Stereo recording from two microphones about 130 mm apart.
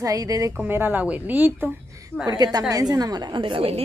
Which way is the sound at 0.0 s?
25° right (ahead or behind).